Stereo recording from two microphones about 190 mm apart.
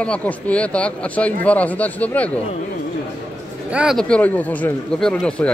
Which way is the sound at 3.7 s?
Centre (ahead or behind).